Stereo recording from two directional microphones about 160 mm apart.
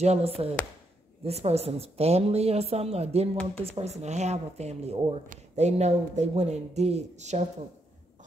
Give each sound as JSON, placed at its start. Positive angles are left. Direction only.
{"t": 0.0, "sound": "a woman's voice", "side_deg": -40}